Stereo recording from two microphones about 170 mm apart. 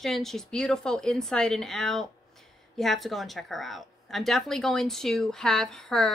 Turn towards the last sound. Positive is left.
turn(degrees=5)  # may be behind; listen again after turning